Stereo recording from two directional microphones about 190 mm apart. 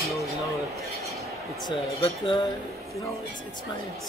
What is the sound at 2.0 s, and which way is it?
Speech, 30° left (ahead or behind).